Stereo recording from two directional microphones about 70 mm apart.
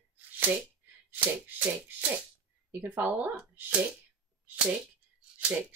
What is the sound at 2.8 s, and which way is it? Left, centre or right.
Speech, right.